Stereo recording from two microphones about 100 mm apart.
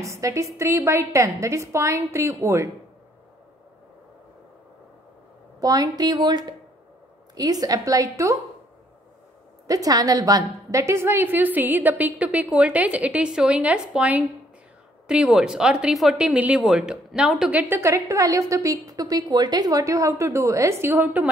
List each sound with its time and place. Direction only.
0.0 s a woman's voice: 30° right (ahead or behind)
5.6 s a woman's voice: 40° right (ahead or behind)
9.7 s a woman's voice: 35° right (ahead or behind); by 17.7 s 15° right (ahead or behind)
17.7 s a woman's voice: 30° right (ahead or behind)